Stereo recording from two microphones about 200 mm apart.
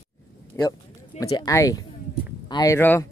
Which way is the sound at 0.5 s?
15° left (ahead or behind).